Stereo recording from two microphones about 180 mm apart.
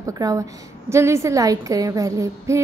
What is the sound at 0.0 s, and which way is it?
A child's voice, 20° right (ahead or behind).